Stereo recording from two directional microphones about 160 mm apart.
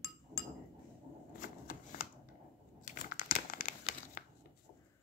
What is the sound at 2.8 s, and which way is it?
Crumpling, 55° left (ahead or behind).